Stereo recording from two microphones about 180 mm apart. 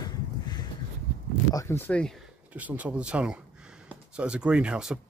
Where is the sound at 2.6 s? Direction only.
10° right (ahead or behind).